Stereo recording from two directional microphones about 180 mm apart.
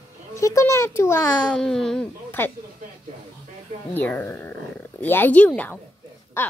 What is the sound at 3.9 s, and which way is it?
Speech, 10° left (ahead or behind).